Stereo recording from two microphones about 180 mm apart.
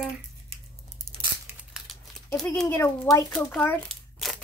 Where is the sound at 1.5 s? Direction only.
Centre (ahead or behind).